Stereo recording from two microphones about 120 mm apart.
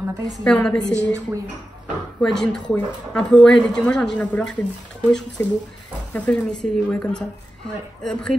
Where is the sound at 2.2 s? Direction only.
5° left (ahead or behind).